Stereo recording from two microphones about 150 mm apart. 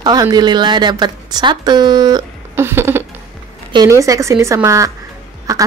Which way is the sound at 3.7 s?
25° right (ahead or behind).